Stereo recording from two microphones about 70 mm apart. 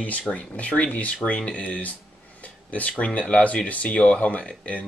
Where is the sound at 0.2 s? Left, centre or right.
Centre.